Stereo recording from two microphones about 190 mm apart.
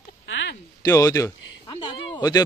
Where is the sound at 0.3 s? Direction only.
80° left.